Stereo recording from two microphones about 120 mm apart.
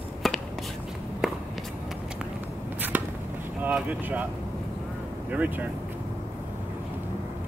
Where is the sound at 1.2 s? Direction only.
5° right (ahead or behind).